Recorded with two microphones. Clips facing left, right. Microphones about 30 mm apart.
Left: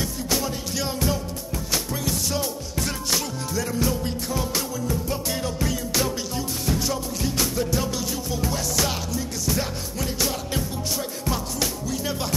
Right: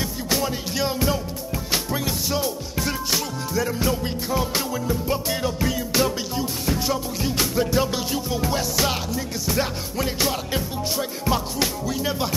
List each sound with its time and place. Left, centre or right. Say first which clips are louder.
0.0 s music: right 2 dB; centre